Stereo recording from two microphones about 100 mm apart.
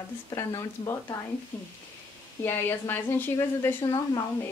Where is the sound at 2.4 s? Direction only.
25° left (ahead or behind).